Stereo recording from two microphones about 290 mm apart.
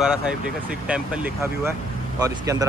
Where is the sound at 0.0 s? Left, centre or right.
Centre.